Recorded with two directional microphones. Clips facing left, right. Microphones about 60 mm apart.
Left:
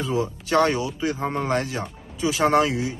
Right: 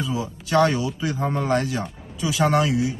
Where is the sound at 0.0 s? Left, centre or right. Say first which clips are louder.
Left 2 dB; left.